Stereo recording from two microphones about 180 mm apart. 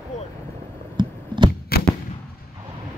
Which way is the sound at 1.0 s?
25° right (ahead or behind).